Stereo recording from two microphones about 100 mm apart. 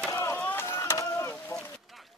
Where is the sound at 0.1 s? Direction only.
30° left (ahead or behind).